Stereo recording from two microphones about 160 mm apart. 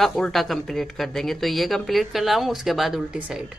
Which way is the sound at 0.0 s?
Centre (ahead or behind).